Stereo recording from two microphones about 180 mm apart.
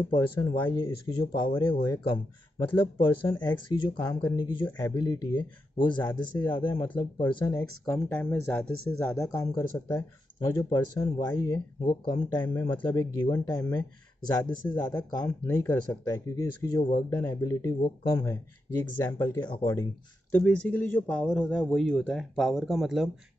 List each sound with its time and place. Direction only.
0.1 s speech: 25° left (ahead or behind)
7.8 s speech: 10° left (ahead or behind)
14.4 s speech: 10° left (ahead or behind)